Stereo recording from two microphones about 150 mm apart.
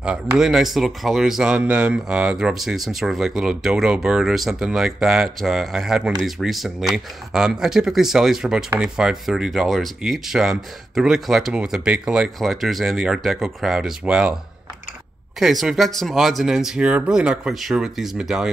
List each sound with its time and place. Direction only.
0.4 s speech: centre (ahead or behind)